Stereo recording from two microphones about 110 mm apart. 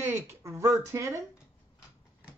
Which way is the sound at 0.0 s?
25° right (ahead or behind).